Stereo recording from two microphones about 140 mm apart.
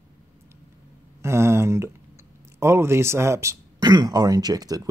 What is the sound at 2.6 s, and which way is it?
Speech, 20° right (ahead or behind).